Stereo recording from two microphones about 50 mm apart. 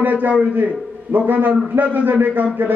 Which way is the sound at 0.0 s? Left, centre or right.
Right.